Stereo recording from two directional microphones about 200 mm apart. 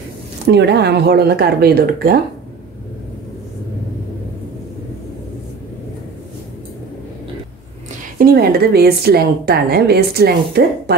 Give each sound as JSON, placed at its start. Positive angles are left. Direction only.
{"t": 0.5, "sound": "a woman's voice", "side_deg": -60}
{"t": 8.2, "sound": "a woman's voice", "side_deg": -50}